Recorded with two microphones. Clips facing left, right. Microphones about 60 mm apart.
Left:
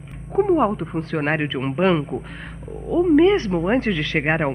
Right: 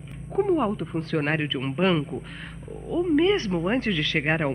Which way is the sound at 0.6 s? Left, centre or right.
Left.